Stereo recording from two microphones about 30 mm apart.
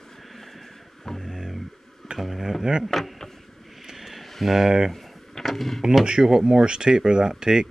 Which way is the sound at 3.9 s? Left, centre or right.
Centre.